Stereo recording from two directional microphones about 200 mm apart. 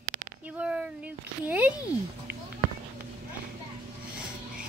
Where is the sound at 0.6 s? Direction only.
5° right (ahead or behind).